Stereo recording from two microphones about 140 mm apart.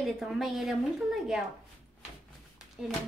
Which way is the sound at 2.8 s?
5° right (ahead or behind).